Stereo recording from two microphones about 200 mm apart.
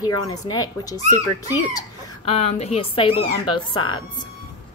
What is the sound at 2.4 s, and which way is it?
Speech, 30° left (ahead or behind).